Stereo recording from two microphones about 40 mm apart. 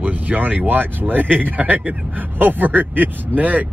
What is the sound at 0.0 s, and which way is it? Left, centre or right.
Speech, right.